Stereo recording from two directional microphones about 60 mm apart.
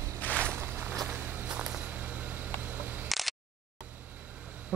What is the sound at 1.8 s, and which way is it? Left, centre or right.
Vehicle, right.